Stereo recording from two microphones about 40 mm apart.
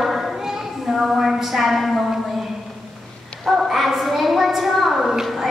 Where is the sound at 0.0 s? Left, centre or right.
Centre.